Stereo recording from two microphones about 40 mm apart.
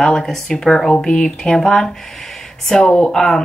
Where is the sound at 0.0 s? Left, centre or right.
Centre.